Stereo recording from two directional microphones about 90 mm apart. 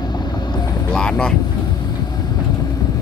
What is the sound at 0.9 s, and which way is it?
Speech, 10° left (ahead or behind).